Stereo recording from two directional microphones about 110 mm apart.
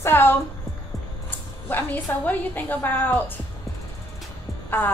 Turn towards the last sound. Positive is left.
turn(degrees=15)  # may be behind; listen again after turning